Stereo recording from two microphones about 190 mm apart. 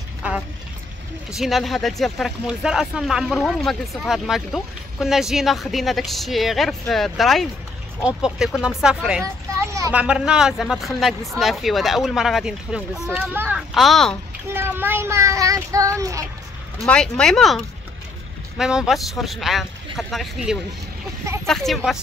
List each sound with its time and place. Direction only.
0.2 s vehicle: 5° right (ahead or behind)
1.3 s speech: centre (ahead or behind)
9.2 s children playing: 15° right (ahead or behind)
9.9 s speech: 5° right (ahead or behind)
14.5 s child singing: 10° right (ahead or behind)
16.8 s speech: 5° left (ahead or behind)